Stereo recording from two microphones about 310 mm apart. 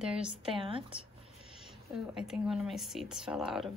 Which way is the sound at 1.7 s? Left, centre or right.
Centre.